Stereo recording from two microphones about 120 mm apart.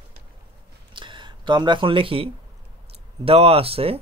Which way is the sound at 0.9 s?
40° right (ahead or behind).